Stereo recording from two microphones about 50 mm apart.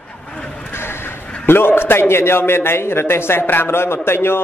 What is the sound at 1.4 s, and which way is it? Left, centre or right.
A man's voice, left.